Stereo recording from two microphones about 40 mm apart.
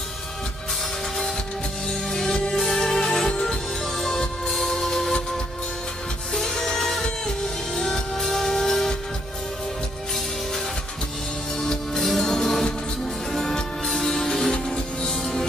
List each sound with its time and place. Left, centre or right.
1.9 s music: centre
6.3 s music: centre
12.0 s music: centre